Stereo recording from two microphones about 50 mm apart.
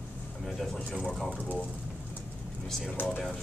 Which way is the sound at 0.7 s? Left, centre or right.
Centre.